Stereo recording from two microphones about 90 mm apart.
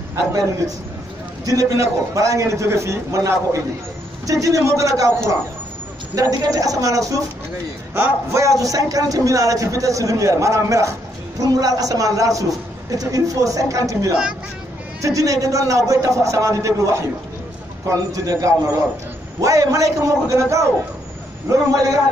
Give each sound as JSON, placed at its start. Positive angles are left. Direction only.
{"t": 0.1, "sound": "a man's voice", "side_deg": -40}
{"t": 7.9, "sound": "a man's voice", "side_deg": -30}